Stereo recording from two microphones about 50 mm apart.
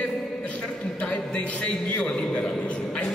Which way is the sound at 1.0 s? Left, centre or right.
Left.